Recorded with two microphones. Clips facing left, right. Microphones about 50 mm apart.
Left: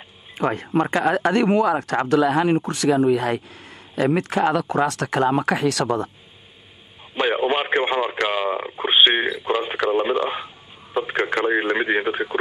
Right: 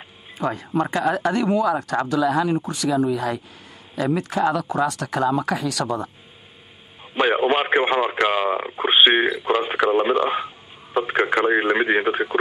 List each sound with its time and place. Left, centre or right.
0.4 s speech: left
7.2 s speech: centre